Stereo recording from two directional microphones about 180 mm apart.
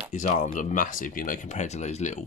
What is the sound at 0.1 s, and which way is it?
Speech, 45° left (ahead or behind).